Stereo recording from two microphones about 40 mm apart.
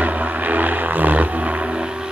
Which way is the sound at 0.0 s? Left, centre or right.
Right.